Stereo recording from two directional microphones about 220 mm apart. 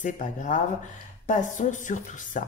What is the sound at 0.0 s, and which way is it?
Speech, 35° left (ahead or behind).